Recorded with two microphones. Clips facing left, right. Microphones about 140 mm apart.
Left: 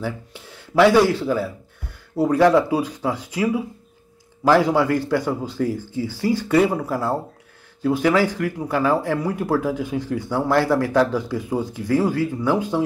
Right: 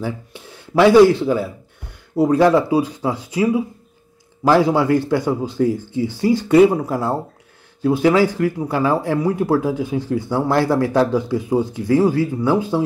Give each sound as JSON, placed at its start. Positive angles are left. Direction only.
{"t": 0.7, "sound": "speech", "side_deg": -15}
{"t": 4.5, "sound": "speech", "side_deg": -10}